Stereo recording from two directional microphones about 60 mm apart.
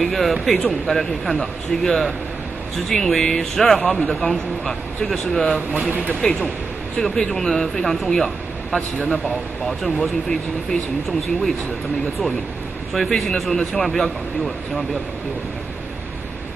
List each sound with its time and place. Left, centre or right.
0.0 s speech: centre
5.7 s speech: right
7.0 s speech: centre
9.7 s speech: centre
12.9 s speech: centre